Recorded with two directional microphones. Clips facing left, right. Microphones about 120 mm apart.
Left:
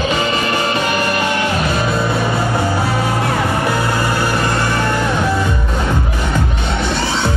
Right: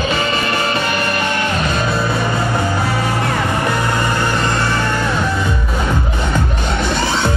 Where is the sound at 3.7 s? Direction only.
10° left (ahead or behind).